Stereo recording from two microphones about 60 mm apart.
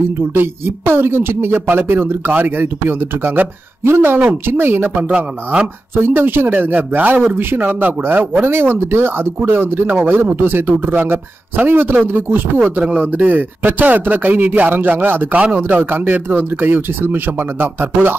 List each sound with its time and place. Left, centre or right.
0.3 s speech: right
5.1 s speech: centre
5.9 s speech: right
8.3 s speech: right
15.3 s speech: right